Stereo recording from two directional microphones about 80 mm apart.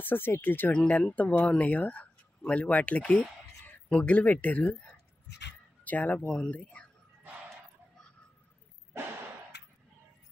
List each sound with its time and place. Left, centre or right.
0.0 s speech: left
5.9 s speech: centre